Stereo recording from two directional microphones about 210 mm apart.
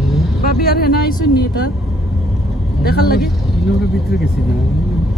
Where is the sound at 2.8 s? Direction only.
45° left (ahead or behind).